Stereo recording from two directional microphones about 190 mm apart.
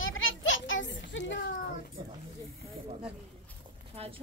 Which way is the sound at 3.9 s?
30° right (ahead or behind).